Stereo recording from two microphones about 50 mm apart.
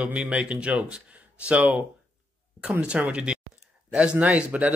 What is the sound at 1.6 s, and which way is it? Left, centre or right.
Speech, right.